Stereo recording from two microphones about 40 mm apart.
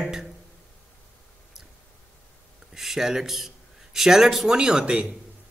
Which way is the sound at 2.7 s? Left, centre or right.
Centre.